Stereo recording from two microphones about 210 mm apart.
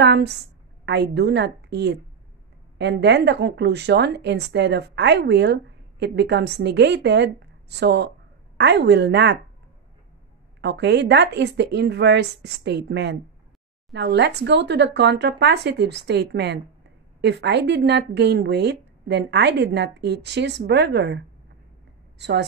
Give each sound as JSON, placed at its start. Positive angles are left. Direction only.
{"t": 0.0, "sound": "a woman's voice", "side_deg": -55}
{"t": 10.6, "sound": "speech", "side_deg": -55}
{"t": 22.2, "sound": "speech", "side_deg": -55}